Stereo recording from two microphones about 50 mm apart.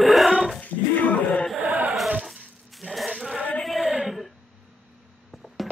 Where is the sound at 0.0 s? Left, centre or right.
Centre.